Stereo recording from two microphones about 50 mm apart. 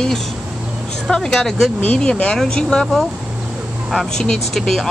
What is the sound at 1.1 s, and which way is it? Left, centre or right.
Speech, centre.